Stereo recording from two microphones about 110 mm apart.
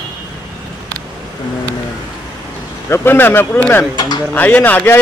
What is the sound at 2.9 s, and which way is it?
A man's voice, 20° left (ahead or behind).